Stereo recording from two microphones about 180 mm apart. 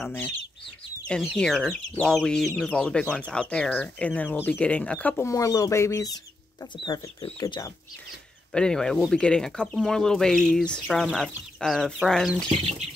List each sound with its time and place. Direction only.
0.0 s speech: 10° left (ahead or behind)
8.5 s speech: 5° left (ahead or behind)